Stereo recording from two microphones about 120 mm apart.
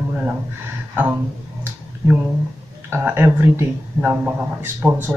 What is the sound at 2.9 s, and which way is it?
A man's voice, 20° right (ahead or behind).